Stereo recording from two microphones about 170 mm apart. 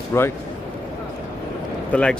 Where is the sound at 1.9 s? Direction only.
10° left (ahead or behind).